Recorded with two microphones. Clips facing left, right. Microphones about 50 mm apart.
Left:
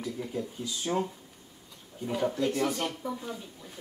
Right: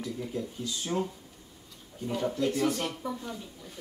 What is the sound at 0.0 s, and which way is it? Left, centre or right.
Speech, centre.